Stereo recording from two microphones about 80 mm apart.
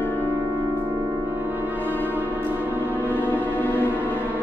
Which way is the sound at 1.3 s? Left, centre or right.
Right.